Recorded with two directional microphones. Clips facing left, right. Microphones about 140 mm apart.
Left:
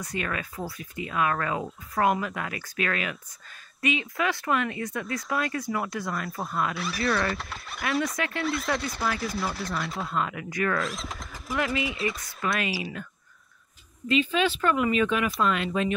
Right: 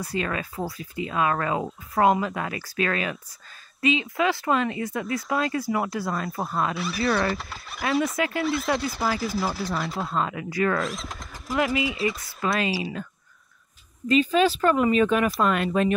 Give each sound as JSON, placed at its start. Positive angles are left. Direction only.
{"t": 0.0, "sound": "speech", "side_deg": -30}
{"t": 7.1, "sound": "speech", "side_deg": 0}
{"t": 8.2, "sound": "speech", "side_deg": -25}
{"t": 8.7, "sound": "speech", "side_deg": 0}
{"t": 10.0, "sound": "speech", "side_deg": -30}
{"t": 10.8, "sound": "speech", "side_deg": 0}
{"t": 11.5, "sound": "speech", "side_deg": -25}
{"t": 12.1, "sound": "speech", "side_deg": -5}
{"t": 12.4, "sound": "speech", "side_deg": -30}
{"t": 14.0, "sound": "speech", "side_deg": -40}